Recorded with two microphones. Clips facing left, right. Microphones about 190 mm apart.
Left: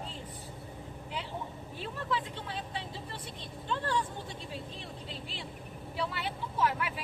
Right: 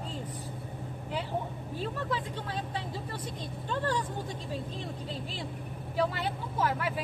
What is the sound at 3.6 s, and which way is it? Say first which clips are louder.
Speech: right 1 dB; 40° right (ahead or behind).